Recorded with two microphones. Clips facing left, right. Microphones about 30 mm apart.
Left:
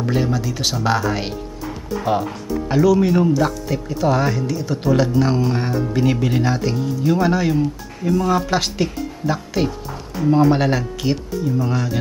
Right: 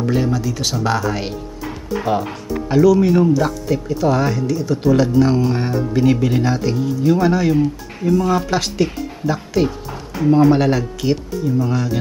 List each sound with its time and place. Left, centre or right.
0.0 s speech: centre
2.0 s music: right
2.7 s speech: centre
9.7 s speech: centre
10.3 s speech: centre